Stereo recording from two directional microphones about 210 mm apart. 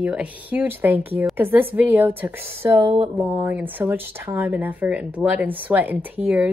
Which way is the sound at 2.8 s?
25° right (ahead or behind).